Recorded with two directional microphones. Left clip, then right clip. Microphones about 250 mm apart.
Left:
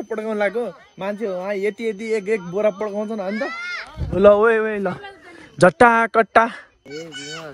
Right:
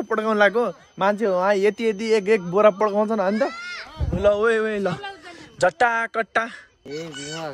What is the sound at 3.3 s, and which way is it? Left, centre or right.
Speech, left.